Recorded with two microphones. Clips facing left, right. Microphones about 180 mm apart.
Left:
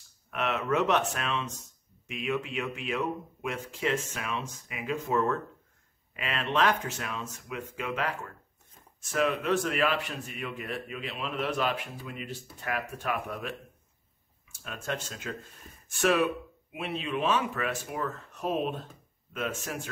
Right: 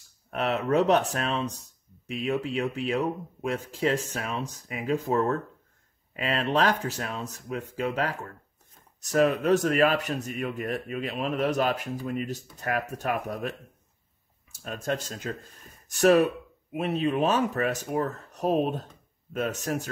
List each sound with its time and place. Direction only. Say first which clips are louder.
0.3 s speech: right 4 dB; 35° right (ahead or behind)